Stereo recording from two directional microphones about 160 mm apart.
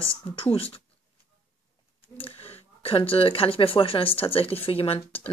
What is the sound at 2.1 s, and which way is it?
Speech, 35° left (ahead or behind).